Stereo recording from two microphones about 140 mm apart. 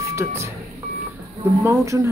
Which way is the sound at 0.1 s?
20° right (ahead or behind).